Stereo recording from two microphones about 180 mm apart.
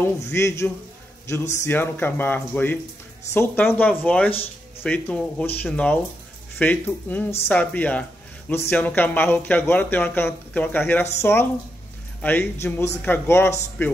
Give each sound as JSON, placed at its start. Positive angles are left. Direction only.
{"t": 0.0, "sound": "speech", "side_deg": 15}
{"t": 4.3, "sound": "music", "side_deg": 30}
{"t": 4.8, "sound": "speech", "side_deg": 5}